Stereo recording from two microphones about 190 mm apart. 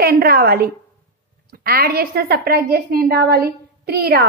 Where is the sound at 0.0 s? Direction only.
55° right (ahead or behind).